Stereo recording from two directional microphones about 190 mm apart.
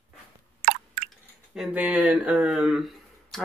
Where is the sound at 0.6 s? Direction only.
50° right (ahead or behind).